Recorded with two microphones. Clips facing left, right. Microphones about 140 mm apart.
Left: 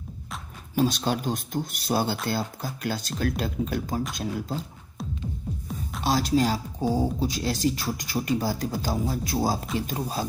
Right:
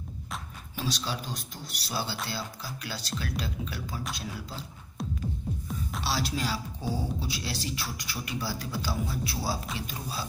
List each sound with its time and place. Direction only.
0.7 s speech: 50° left (ahead or behind)
5.0 s music: centre (ahead or behind)
6.0 s speech: 45° left (ahead or behind)